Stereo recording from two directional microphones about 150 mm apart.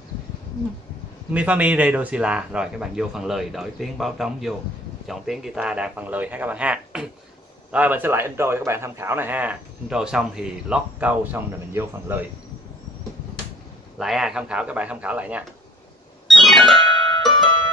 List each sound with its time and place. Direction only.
1.3 s a man's voice: 10° right (ahead or behind)
13.9 s a man's voice: centre (ahead or behind)
16.3 s music: centre (ahead or behind)
16.7 s music: 30° left (ahead or behind)